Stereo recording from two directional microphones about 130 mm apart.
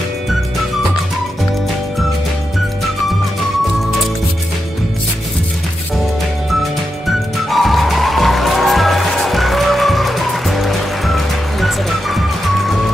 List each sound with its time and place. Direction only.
6.6 s music: centre (ahead or behind)